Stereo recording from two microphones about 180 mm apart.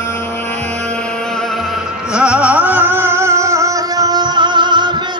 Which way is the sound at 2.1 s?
5° right (ahead or behind).